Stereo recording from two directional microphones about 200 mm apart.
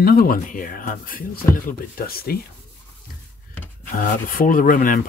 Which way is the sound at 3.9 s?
45° left (ahead or behind).